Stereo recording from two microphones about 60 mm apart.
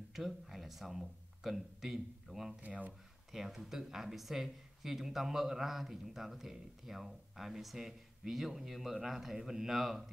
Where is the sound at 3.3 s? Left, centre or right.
Centre.